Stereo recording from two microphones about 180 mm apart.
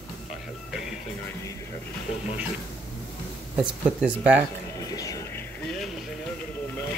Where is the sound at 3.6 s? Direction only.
5° right (ahead or behind).